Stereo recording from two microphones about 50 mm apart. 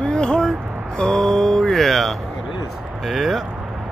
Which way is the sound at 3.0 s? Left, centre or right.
Centre.